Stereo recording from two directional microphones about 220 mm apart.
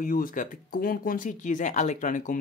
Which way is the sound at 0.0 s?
40° left (ahead or behind).